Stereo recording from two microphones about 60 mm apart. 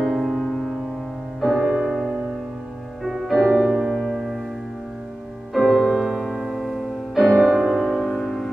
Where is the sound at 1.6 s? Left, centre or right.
Centre.